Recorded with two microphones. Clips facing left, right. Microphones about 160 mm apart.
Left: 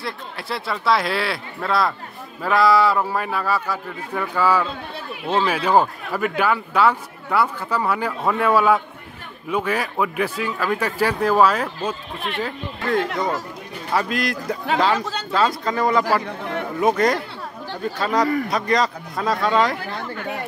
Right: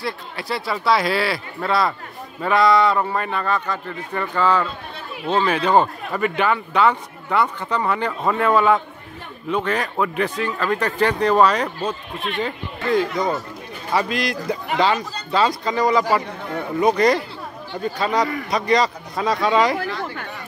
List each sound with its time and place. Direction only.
0.0 s a man's voice: centre (ahead or behind)
15.0 s a man's voice: 90° left
15.3 s a man's voice: centre (ahead or behind)